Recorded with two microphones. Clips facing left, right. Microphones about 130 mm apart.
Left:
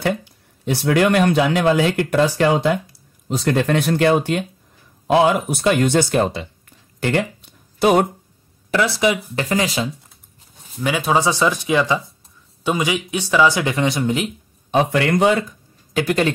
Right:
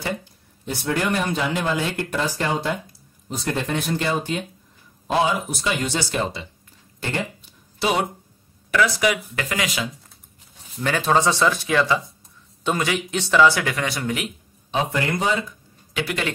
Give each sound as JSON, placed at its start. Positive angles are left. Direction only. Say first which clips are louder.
{"t": 0.0, "sound": "speech", "louder": "left 7 dB", "side_deg": 75}
{"t": 7.0, "sound": "speech", "louder": "left 7 dB", "side_deg": 80}
{"t": 7.8, "sound": "speech", "louder": "left 7 dB", "side_deg": 50}
{"t": 8.6, "sound": "a sound", "louder": "left 1 dB", "side_deg": 30}
{"t": 9.0, "sound": "speech", "louder": "left 3 dB", "side_deg": 30}
{"t": 10.8, "sound": "speech", "louder": "left 1 dB", "side_deg": 10}
{"t": 14.7, "sound": "speech", "louder": "left 6 dB", "side_deg": 75}
{"t": 15.9, "sound": "speech", "louder": "left 8 dB", "side_deg": 40}